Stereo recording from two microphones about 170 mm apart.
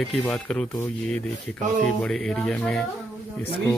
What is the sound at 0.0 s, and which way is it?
Speech, 5° left (ahead or behind).